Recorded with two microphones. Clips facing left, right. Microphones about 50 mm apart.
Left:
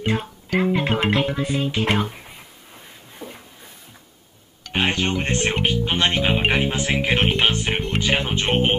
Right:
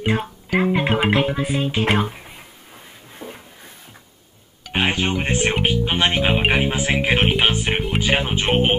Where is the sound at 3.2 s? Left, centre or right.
Right.